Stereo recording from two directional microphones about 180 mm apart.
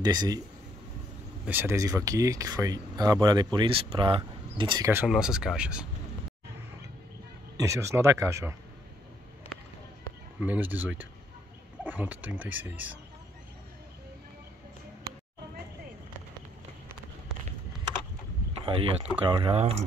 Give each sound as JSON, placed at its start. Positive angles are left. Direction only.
{"t": 0.0, "sound": "speech", "side_deg": -25}
{"t": 1.4, "sound": "speech", "side_deg": -10}
{"t": 5.0, "sound": "speech", "side_deg": -5}
{"t": 7.5, "sound": "speech", "side_deg": -15}
{"t": 10.4, "sound": "speech", "side_deg": -10}
{"t": 18.7, "sound": "speech", "side_deg": -30}